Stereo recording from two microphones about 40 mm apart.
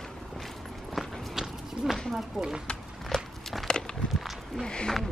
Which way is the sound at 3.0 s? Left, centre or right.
Centre.